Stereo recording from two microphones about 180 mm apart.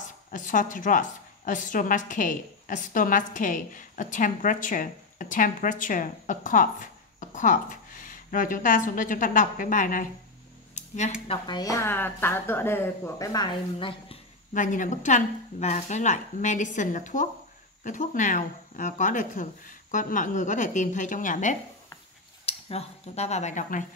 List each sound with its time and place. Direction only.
0.3 s a woman's voice: 45° left (ahead or behind)
11.2 s speech: 25° left (ahead or behind)
14.5 s a woman's voice: 45° left (ahead or behind)
22.5 s speech: 35° left (ahead or behind)